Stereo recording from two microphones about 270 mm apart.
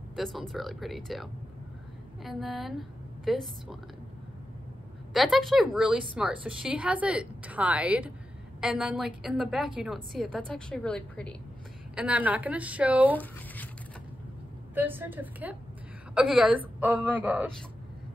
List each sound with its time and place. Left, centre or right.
0.1 s a woman's voice: centre
5.1 s a woman's voice: centre
14.7 s a woman's voice: centre